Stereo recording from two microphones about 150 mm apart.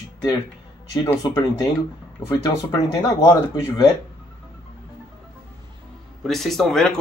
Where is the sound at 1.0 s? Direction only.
25° left (ahead or behind).